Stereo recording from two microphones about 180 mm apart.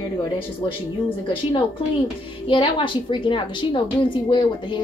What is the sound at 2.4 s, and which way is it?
A woman's voice, 30° left (ahead or behind).